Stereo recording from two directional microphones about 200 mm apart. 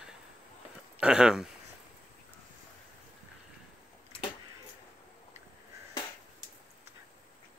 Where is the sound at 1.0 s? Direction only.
5° right (ahead or behind).